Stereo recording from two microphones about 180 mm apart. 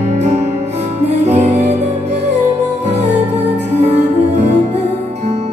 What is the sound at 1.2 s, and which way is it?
Music, 40° right (ahead or behind).